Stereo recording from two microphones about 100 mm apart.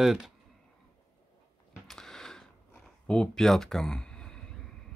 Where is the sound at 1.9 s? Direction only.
5° left (ahead or behind).